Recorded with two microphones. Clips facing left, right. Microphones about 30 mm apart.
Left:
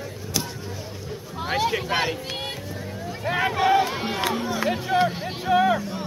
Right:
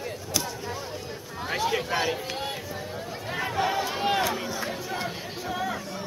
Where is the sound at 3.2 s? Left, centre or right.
Left.